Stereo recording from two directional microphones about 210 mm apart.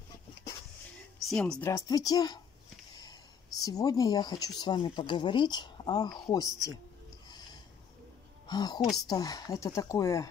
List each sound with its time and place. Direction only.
1.2 s speech: centre (ahead or behind)
1.7 s speech: 15° left (ahead or behind)
8.5 s speech: 20° left (ahead or behind)